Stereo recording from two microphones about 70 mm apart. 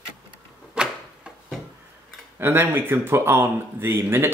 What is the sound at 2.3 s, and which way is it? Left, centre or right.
Speech, right.